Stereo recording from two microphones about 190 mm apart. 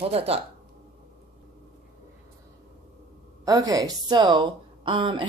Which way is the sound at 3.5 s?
20° right (ahead or behind).